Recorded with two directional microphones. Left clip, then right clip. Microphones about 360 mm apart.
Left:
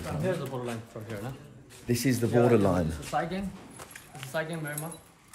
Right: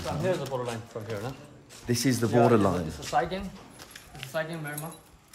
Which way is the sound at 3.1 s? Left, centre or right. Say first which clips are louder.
Right 4 dB; right.